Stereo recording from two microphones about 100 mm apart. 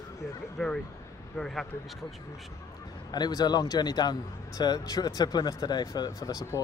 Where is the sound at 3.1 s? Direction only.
40° left (ahead or behind).